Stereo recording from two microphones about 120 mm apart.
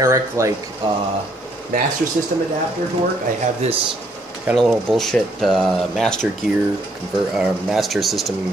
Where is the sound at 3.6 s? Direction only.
60° right (ahead or behind).